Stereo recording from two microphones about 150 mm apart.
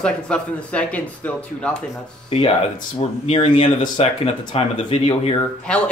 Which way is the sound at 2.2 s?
40° left (ahead or behind).